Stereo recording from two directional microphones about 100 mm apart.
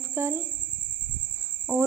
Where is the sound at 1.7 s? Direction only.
25° right (ahead or behind).